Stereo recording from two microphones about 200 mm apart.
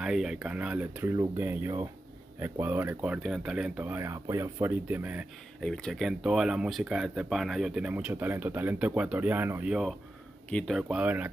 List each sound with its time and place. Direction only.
0.0 s speech: 5° right (ahead or behind)